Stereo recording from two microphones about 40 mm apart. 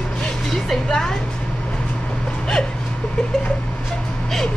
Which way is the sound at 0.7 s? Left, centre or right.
Centre.